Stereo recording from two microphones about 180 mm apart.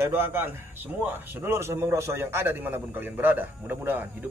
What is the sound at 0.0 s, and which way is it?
A man's voice, 15° right (ahead or behind).